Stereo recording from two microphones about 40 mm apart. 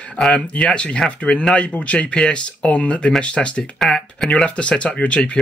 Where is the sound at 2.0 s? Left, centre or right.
Left.